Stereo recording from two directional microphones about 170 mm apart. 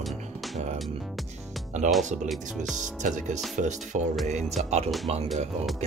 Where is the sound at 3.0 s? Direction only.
45° right (ahead or behind).